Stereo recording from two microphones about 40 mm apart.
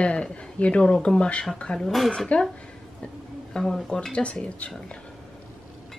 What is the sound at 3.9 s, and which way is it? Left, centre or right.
Speech, left.